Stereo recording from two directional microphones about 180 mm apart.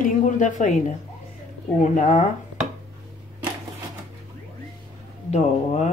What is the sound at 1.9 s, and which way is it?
Speech, 40° left (ahead or behind).